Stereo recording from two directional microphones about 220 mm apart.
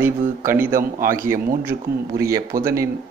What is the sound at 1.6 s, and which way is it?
Speech, 10° right (ahead or behind).